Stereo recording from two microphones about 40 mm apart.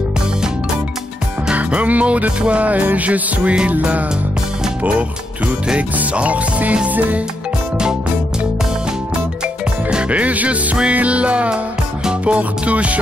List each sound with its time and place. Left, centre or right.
1.5 s music: right
6.1 s music: right
10.0 s music: right